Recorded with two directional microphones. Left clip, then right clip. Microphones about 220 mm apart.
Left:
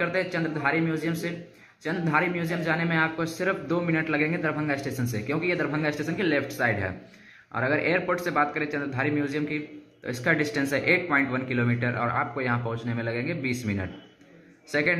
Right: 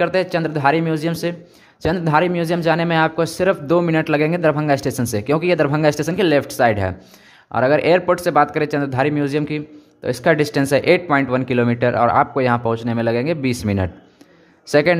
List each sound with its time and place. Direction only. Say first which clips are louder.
0.0 s a man's voice: right 9 dB; 50° right (ahead or behind)
14.7 s speech: right 10 dB; 55° right (ahead or behind)